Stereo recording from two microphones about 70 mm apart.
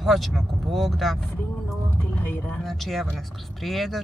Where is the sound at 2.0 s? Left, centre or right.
Left.